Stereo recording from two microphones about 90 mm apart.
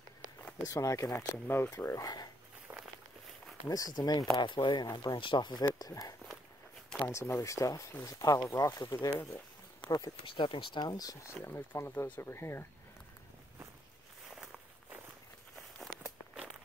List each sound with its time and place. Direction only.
0.7 s speech: 35° left (ahead or behind)
2.0 s speech: 50° left (ahead or behind)
2.7 s walk: 25° right (ahead or behind)
3.6 s speech: 40° left (ahead or behind)
4.4 s speech: 60° left (ahead or behind)
5.8 s speech: 45° left (ahead or behind)
7.0 s speech: 30° left (ahead or behind)
8.6 s speech: 30° left (ahead or behind)
9.8 s speech: 45° left (ahead or behind)
10.2 s speech: 70° left (ahead or behind)
10.8 s speech: 45° left (ahead or behind)
11.4 s speech: 25° left (ahead or behind)